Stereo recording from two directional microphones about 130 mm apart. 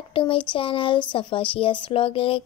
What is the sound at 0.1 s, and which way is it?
A woman's voice, 40° left (ahead or behind).